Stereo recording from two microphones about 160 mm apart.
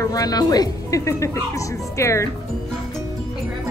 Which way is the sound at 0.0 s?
20° left (ahead or behind).